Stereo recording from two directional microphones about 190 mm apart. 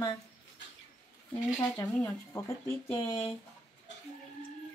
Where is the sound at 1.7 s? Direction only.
10° left (ahead or behind).